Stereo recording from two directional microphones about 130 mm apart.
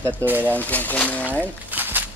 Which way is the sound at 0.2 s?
15° right (ahead or behind).